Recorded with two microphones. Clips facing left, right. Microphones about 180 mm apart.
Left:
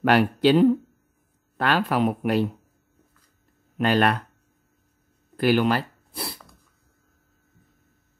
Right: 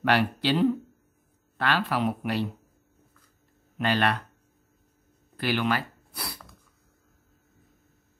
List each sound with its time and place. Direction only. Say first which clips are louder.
0.0 s speech: left 6 dB; 45° left (ahead or behind)
3.7 s speech: left 5 dB; 45° left (ahead or behind)
5.4 s speech: left 6 dB; 45° left (ahead or behind)